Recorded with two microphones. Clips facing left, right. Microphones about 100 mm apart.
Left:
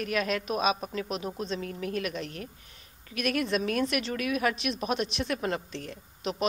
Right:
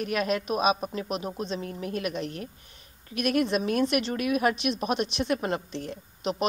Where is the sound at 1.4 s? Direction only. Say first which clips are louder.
Right 1 dB; 25° right (ahead or behind).